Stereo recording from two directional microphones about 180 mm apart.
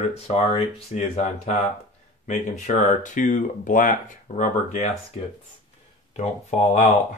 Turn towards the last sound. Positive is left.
turn(degrees=40)  # may be behind; listen again after turning